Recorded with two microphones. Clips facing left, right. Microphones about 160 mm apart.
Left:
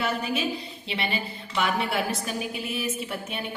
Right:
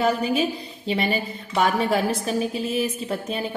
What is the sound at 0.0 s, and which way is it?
A woman's voice, 35° right (ahead or behind).